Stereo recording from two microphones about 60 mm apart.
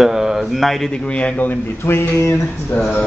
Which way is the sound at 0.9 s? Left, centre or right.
Centre.